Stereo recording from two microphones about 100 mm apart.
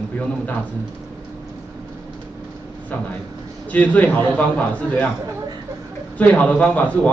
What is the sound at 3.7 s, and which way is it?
A man's voice, 15° left (ahead or behind).